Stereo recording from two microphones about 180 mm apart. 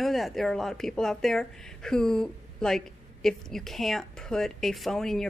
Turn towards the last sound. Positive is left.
turn(degrees=0)  # may be behind; listen again after turning